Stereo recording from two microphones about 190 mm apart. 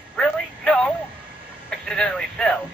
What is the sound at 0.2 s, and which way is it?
Music, 5° left (ahead or behind).